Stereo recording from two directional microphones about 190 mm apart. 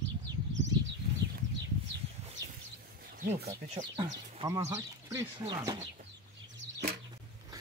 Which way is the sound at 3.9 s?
25° right (ahead or behind).